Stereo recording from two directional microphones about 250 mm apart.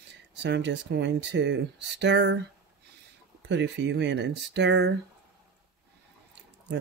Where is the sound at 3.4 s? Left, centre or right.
Right.